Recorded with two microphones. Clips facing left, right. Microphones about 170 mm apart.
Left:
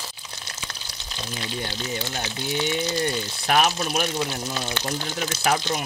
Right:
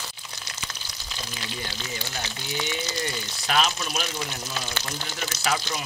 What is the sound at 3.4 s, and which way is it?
Speech, 55° left (ahead or behind).